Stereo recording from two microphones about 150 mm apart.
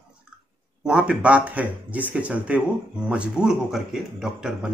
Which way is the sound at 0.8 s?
5° right (ahead or behind).